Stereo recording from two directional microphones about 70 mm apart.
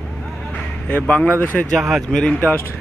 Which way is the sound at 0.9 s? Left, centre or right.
Left.